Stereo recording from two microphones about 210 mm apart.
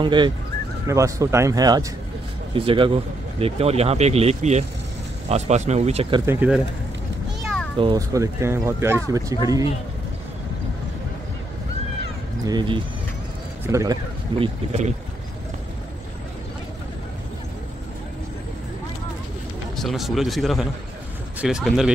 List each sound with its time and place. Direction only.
0.0 s speech: 20° right (ahead or behind)
6.2 s speech: 5° right (ahead or behind)
7.8 s speech: 15° right (ahead or behind)
12.4 s speech: 20° right (ahead or behind)
14.4 s speech: 30° right (ahead or behind)
19.8 s speech: centre (ahead or behind)